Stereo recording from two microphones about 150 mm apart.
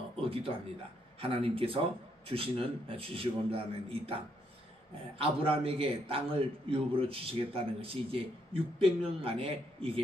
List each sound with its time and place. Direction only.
0.2 s a man's voice: 35° right (ahead or behind)
5.2 s a man's voice: 40° right (ahead or behind)